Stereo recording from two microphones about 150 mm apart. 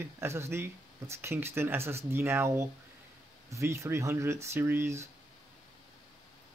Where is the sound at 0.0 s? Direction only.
15° right (ahead or behind).